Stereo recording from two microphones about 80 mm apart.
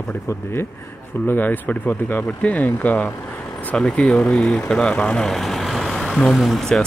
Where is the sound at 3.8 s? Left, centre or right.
Centre.